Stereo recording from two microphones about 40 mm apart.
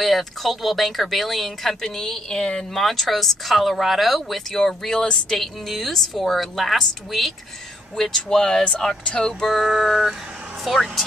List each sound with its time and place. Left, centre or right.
0.0 s speech: centre
2.7 s speech: centre
5.4 s speech: centre
8.6 s speech: left
9.5 s speech: centre